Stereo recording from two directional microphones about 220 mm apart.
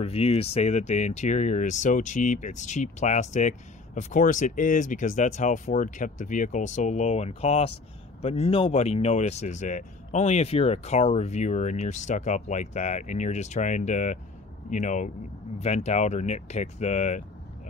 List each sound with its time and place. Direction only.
0.0 s speech: 25° left (ahead or behind)